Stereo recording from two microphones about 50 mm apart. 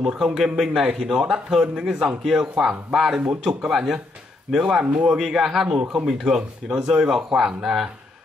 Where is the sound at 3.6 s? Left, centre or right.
Centre.